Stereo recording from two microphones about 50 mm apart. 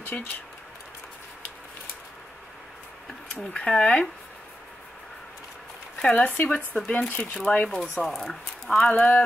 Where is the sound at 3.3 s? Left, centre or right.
Left.